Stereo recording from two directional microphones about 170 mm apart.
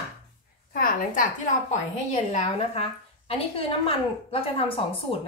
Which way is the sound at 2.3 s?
40° left (ahead or behind).